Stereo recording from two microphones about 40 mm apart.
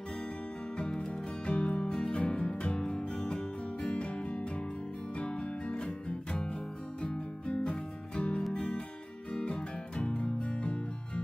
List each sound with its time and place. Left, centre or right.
0.9 s music: centre; by 2.8 s left
2.8 s music: centre